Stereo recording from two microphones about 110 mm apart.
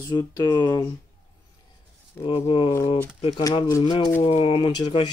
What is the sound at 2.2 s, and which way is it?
Speech, 55° left (ahead or behind).